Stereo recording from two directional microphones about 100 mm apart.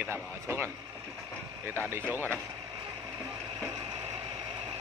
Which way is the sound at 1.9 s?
20° right (ahead or behind).